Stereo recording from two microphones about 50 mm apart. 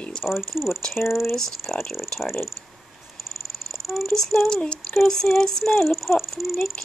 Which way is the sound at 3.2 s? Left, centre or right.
Centre.